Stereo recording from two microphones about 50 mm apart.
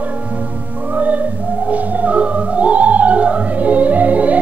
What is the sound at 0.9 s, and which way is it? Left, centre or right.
Music, right.